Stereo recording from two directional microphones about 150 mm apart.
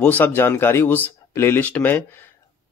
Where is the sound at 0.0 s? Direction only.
10° left (ahead or behind).